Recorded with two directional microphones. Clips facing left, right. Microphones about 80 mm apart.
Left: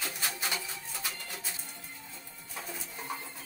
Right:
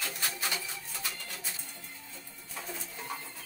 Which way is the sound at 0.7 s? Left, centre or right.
Centre.